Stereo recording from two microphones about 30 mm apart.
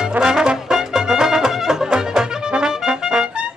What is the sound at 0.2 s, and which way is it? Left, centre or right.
Brass instrument, right.